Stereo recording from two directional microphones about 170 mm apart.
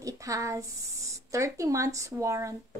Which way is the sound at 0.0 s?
20° right (ahead or behind).